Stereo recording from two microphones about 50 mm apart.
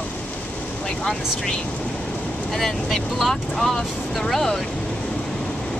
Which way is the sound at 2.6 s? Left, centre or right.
Centre.